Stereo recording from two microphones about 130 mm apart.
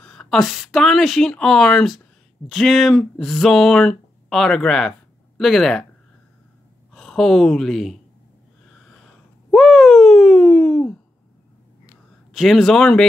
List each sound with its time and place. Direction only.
0.0 s speech: 5° left (ahead or behind)
6.9 s a woman's voice: 5° left (ahead or behind)
9.0 s a sound: centre (ahead or behind)
12.3 s speech: centre (ahead or behind)